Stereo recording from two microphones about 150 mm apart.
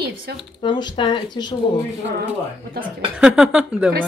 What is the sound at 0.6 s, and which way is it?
Speech, 30° left (ahead or behind).